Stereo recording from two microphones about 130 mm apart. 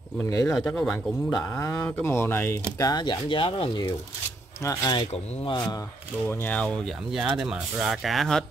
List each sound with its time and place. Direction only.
0.2 s speech: 25° left (ahead or behind)
0.6 s speech: 5° left (ahead or behind)
1.3 s speech: 25° left (ahead or behind)
2.9 s speech: 35° left (ahead or behind)
6.2 s speech: 15° left (ahead or behind)
7.1 s speech: 5° right (ahead or behind)